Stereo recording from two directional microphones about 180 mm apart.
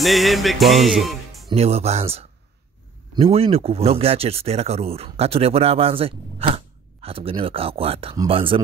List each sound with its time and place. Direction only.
0.0 s music: centre (ahead or behind)
1.5 s speech: 35° right (ahead or behind)